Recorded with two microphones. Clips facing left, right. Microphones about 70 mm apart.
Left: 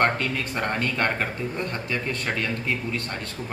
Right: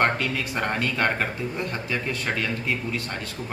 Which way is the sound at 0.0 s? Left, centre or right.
Centre.